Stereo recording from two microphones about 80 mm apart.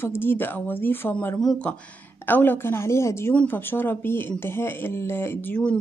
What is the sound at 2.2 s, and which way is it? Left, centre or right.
Speech, left.